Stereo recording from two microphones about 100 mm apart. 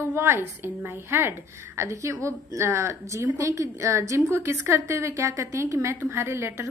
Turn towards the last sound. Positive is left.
turn(degrees=-25)  # may be behind; listen again after turning